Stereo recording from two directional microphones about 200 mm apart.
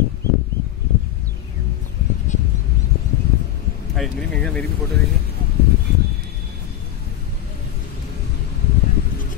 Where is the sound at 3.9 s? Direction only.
5° left (ahead or behind).